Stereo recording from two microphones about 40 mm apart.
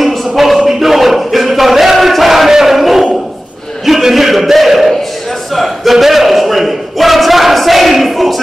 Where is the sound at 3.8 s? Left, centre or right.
Centre.